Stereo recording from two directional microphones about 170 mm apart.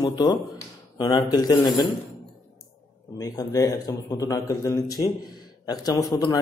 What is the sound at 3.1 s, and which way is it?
A man's voice, 20° left (ahead or behind).